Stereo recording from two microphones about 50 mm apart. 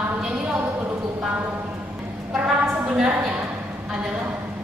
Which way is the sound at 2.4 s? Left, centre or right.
Centre.